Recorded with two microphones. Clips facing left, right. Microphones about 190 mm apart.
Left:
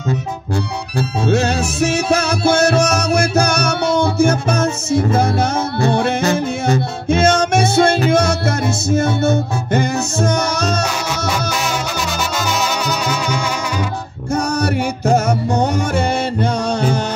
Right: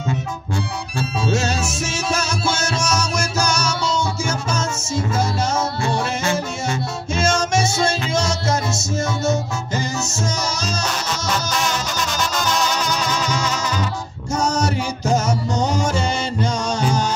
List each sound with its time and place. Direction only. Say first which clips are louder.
0.9 s music: left 5 dB; 60° left (ahead or behind)
12.2 s music: even; 5° left (ahead or behind)
14.3 s music: left 3 dB; 60° left (ahead or behind)